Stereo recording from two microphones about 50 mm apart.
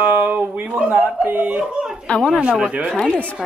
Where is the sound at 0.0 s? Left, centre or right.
Right.